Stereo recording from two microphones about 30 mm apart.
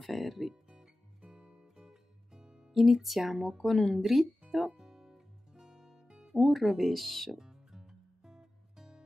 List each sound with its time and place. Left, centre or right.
0.0 s speech: centre
1.2 s music: right
1.8 s music: centre
2.7 s speech: centre
3.6 s speech: centre
4.0 s speech: centre
4.5 s music: centre
6.3 s speech: centre
7.3 s music: centre